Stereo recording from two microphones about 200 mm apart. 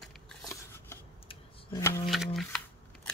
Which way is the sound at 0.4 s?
15° left (ahead or behind).